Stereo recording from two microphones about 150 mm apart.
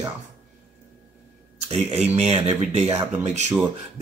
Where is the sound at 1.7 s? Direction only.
45° right (ahead or behind).